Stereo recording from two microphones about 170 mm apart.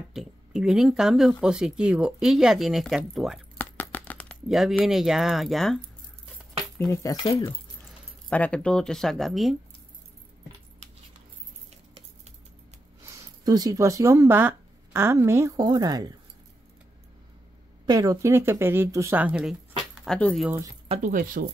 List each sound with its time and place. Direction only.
0.1 s speech: 5° right (ahead or behind)
3.5 s coin: 10° left (ahead or behind)
4.8 s speech: centre (ahead or behind)
6.9 s speech: 20° left (ahead or behind)
8.3 s speech: 5° left (ahead or behind)
13.0 s speech: 20° right (ahead or behind)
17.8 s speech: 20° right (ahead or behind)
20.1 s speech: 5° left (ahead or behind)
20.9 s speech: 50° right (ahead or behind)